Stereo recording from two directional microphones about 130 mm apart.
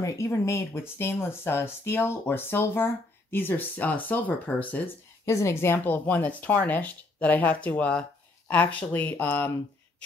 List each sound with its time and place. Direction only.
0.0 s speech: 25° left (ahead or behind)
5.2 s speech: 20° left (ahead or behind)